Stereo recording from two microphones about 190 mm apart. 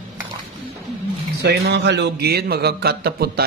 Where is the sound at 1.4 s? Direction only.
65° right (ahead or behind).